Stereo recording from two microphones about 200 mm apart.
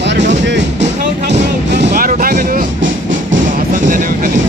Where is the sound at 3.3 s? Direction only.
40° right (ahead or behind).